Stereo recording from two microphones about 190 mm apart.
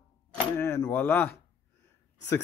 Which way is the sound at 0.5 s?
10° left (ahead or behind).